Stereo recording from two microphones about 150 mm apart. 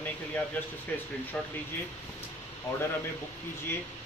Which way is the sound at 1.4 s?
5° left (ahead or behind).